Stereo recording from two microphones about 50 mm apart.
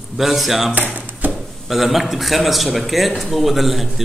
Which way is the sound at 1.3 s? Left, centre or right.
Centre.